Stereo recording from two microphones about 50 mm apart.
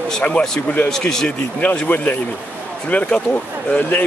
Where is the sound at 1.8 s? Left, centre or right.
Left.